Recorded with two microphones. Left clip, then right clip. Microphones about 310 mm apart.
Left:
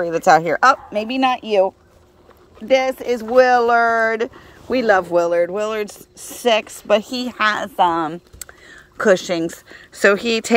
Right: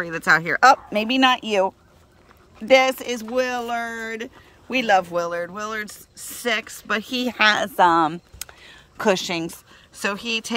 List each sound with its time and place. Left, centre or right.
0.0 s speech: right
2.7 s speech: centre
6.9 s speech: centre
7.7 s speech: right
8.6 s speech: centre